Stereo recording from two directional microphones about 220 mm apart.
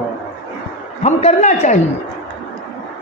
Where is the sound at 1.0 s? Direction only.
30° left (ahead or behind).